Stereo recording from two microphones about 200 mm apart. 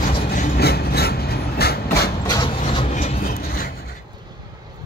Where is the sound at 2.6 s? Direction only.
30° left (ahead or behind); by 3.6 s 45° left (ahead or behind).